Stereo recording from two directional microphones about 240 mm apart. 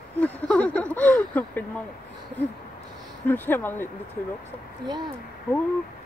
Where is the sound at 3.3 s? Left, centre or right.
Centre.